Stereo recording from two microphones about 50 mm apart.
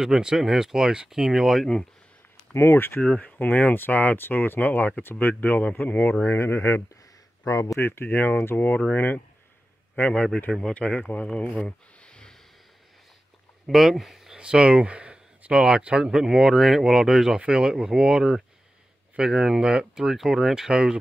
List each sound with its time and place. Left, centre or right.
0.0 s speech: centre
2.5 s speech: left
3.0 s speech: left
6.2 s speech: left
7.4 s speech: left
7.8 s speech: left
10.1 s speech: centre
11.6 s a sound: centre
13.7 s speech: centre
14.4 s speech: centre